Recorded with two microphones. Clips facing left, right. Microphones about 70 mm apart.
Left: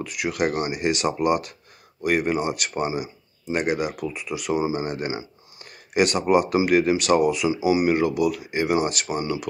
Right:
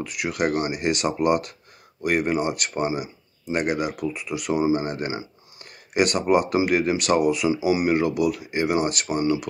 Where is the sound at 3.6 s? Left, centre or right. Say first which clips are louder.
Even; centre.